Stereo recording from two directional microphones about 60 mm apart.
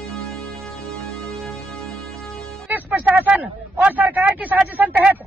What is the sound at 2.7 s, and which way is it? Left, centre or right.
Music, right.